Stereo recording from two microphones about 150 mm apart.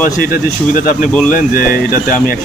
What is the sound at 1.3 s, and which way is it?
Speech, 70° left (ahead or behind).